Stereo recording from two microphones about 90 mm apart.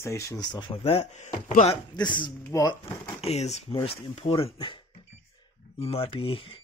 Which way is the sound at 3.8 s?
85° left.